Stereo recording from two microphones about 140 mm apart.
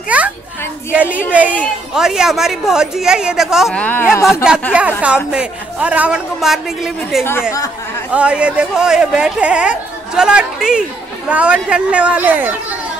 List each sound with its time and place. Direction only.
0.1 s a sound: 10° right (ahead or behind)
0.9 s speech: 10° right (ahead or behind)
3.8 s speech: 15° left (ahead or behind)
5.0 s speech: 10° right (ahead or behind)